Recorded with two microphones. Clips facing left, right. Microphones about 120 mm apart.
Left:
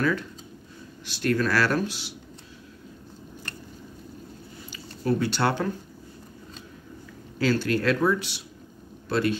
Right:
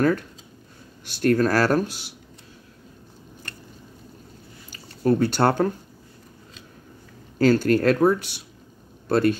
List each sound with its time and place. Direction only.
1.0 s speech: 45° right (ahead or behind)
4.7 s speech: 45° right (ahead or behind)
7.3 s speech: 45° right (ahead or behind)